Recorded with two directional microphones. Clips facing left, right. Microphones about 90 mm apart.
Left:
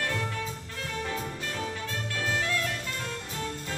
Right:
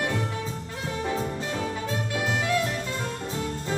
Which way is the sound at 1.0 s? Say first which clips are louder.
Right 5 dB; 25° right (ahead or behind).